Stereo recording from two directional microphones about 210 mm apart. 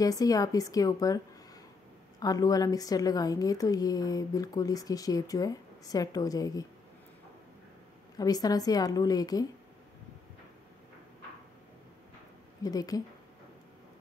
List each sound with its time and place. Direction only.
0.0 s a woman's voice: 15° left (ahead or behind)
8.2 s a woman's voice: 15° left (ahead or behind)
12.6 s a woman's voice: 15° left (ahead or behind)